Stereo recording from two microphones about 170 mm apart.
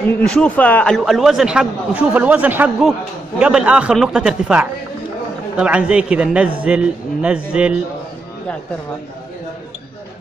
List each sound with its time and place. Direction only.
0.2 s a man's voice: 5° left (ahead or behind)